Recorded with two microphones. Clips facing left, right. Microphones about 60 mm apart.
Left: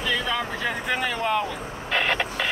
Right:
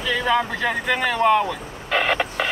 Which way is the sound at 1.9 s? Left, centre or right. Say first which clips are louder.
Right 3 dB; right.